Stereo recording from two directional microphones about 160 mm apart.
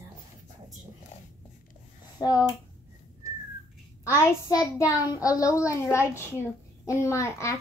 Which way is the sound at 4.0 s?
20° left (ahead or behind).